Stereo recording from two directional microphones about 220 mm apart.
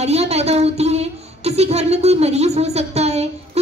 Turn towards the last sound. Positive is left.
turn(degrees=-30)  # may be behind; listen again after turning